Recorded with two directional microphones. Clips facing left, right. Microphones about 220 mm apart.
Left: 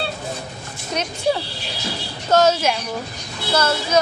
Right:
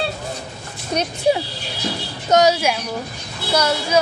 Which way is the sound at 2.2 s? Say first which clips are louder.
Right 1 dB; 15° right (ahead or behind).